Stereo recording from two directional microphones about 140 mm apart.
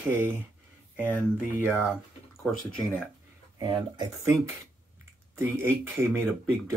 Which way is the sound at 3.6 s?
30° right (ahead or behind).